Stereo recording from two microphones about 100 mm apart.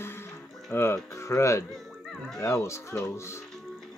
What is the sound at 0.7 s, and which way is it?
Speech, 25° left (ahead or behind).